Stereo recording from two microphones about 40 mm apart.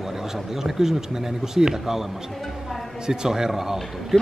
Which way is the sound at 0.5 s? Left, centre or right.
Centre.